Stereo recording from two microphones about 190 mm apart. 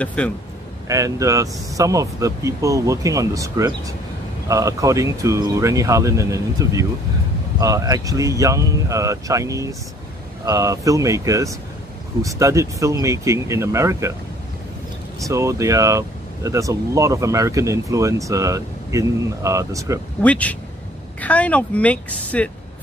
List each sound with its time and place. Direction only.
0.0 s a woman's voice: 5° left (ahead or behind)
0.8 s speech: 15° right (ahead or behind)
15.2 s speech: 15° right (ahead or behind)
20.2 s a woman's voice: 5° left (ahead or behind)